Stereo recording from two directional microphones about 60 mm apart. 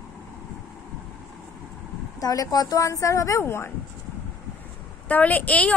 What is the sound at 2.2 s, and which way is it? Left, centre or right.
A woman's voice, left.